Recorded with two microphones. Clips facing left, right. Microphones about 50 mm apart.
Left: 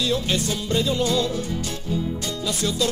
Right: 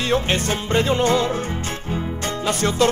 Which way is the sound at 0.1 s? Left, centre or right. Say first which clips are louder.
Right 4 dB; right.